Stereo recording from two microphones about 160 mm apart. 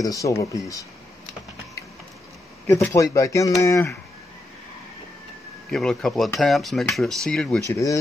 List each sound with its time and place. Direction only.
0.0 s speech: 20° left (ahead or behind)
2.6 s speech: 15° left (ahead or behind)
5.7 s speech: 5° left (ahead or behind)
7.7 s speech: 20° left (ahead or behind)